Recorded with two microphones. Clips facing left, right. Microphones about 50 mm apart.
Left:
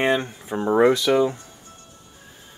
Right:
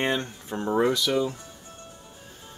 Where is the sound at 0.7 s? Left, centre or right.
Left.